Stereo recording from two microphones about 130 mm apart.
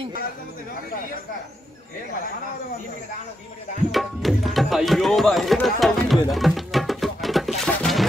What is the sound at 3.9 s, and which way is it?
Tabla, centre (ahead or behind).